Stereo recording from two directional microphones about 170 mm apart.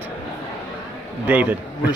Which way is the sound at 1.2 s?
10° right (ahead or behind).